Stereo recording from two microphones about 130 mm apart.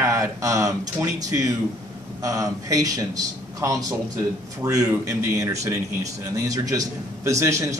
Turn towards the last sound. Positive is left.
turn(degrees=-25)  # may be behind; listen again after turning